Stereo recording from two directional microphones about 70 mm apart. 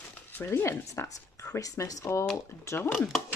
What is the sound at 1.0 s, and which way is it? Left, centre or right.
Speech, left.